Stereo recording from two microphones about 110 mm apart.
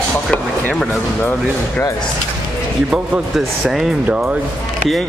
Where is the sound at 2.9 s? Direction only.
5° right (ahead or behind).